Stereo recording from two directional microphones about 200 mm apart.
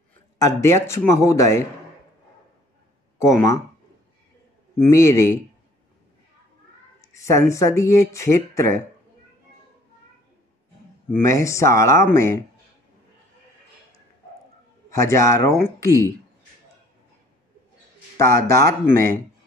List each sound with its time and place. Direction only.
0.4 s speech: 15° left (ahead or behind)
3.2 s speech: 15° left (ahead or behind)
4.7 s speech: 15° left (ahead or behind)
7.2 s speech: 15° left (ahead or behind)
11.1 s speech: 15° left (ahead or behind)
14.9 s speech: 15° left (ahead or behind)
18.1 s a man's voice: 15° left (ahead or behind)